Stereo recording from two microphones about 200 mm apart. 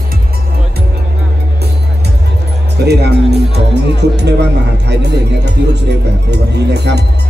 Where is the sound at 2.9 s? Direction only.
55° right (ahead or behind).